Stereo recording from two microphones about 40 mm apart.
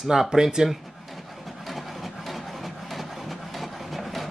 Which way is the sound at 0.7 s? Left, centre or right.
Centre.